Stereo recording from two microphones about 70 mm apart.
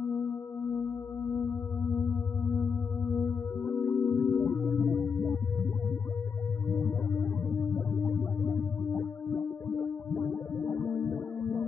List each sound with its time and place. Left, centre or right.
2.4 s music: centre
4.5 s music: centre
6.8 s music: left